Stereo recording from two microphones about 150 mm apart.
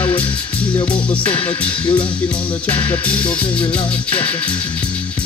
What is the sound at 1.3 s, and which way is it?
Music, 30° left (ahead or behind).